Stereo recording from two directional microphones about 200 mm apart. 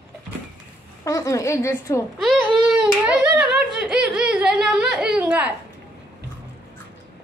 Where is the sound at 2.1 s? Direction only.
Centre (ahead or behind).